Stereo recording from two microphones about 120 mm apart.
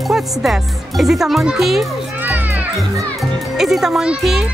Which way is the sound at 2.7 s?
Centre (ahead or behind).